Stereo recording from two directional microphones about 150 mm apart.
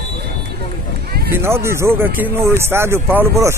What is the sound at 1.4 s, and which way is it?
Speech, 15° right (ahead or behind).